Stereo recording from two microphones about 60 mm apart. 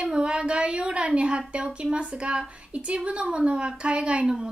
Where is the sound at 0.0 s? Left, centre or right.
Centre.